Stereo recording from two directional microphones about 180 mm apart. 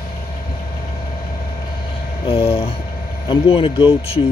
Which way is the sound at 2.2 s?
30° left (ahead or behind).